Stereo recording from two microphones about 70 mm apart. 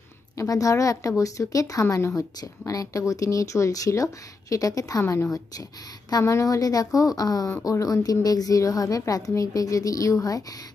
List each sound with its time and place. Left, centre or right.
0.4 s speech: left
2.4 s speech: left
6.2 s a woman's voice: left